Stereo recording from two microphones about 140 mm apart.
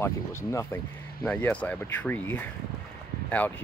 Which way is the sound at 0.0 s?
20° left (ahead or behind).